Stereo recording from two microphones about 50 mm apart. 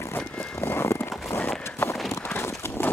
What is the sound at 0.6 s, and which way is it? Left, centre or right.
Vehicle, left.